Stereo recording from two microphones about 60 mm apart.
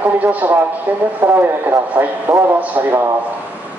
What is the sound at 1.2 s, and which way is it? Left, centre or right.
A man's voice, right.